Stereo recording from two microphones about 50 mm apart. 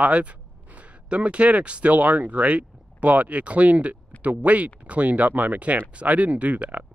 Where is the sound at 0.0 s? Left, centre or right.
Right.